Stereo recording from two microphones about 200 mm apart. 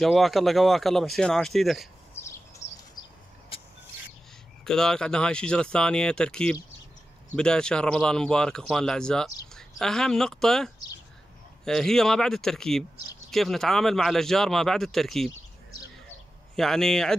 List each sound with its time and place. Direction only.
0.0 s speech: centre (ahead or behind)
2.2 s a sound: 15° left (ahead or behind)
2.6 s bird: 60° left (ahead or behind)
3.0 s a sound: 20° left (ahead or behind)
4.6 s speech: 5° left (ahead or behind)
16.5 s speech: centre (ahead or behind)